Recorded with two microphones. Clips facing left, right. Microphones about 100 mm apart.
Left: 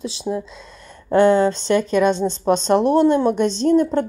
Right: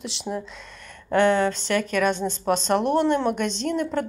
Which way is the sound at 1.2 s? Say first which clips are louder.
Left 5 dB; 35° left (ahead or behind).